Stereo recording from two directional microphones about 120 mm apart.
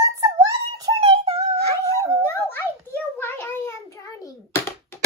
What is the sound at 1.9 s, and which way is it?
Dog, 20° left (ahead or behind).